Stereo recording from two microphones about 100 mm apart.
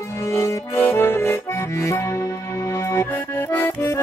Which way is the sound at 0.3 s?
30° left (ahead or behind).